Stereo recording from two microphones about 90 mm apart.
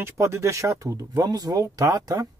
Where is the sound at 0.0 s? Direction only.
30° right (ahead or behind).